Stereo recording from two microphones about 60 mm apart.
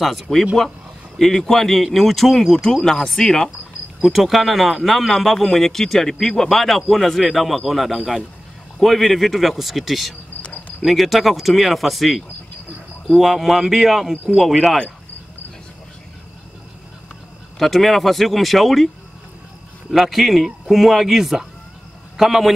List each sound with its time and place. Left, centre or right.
0.0 s speech: centre
4.0 s speech: centre
17.6 s speech: centre
19.9 s a man's voice: centre